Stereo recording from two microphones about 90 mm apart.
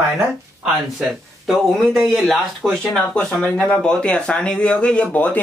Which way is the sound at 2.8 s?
10° left (ahead or behind).